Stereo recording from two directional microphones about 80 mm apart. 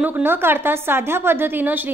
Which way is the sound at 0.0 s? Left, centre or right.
Right.